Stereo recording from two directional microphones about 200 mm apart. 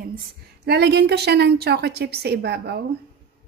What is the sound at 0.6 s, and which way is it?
A woman's voice, 55° right (ahead or behind).